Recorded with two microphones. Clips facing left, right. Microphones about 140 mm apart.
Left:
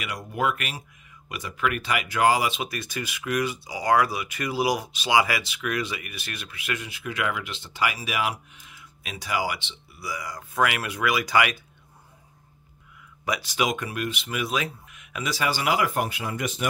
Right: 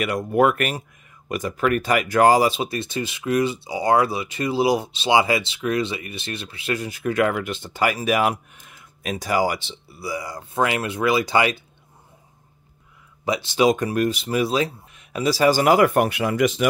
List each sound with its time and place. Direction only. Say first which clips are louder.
0.0 s speech: right 9 dB; 55° right (ahead or behind); by 11.6 s 30° right (ahead or behind)
13.2 s speech: right 7 dB; 25° right (ahead or behind); by 16.6 s 90° right